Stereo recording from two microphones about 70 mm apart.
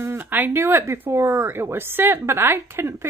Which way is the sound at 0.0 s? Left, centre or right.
Right.